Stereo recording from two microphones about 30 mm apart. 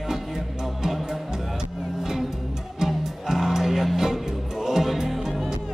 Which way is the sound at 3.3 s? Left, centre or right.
Centre.